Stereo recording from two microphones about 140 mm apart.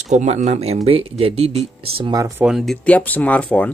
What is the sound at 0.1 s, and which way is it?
Speech, 55° right (ahead or behind).